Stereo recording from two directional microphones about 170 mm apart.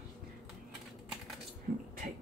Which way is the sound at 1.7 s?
55° right (ahead or behind).